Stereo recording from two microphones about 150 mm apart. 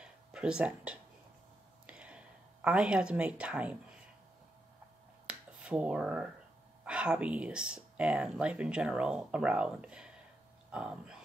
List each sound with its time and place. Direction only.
0.0 s a sound: 5° right (ahead or behind)
5.2 s finger snapping: 5° right (ahead or behind)
6.8 s speech: 5° right (ahead or behind)